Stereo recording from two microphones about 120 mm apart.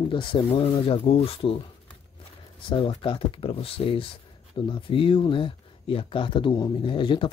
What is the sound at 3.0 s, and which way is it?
Speech, 45° left (ahead or behind).